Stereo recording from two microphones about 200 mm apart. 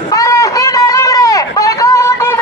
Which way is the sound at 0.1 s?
15° left (ahead or behind).